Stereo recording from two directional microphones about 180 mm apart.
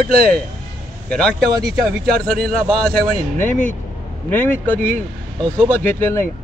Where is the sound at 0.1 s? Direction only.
55° right (ahead or behind).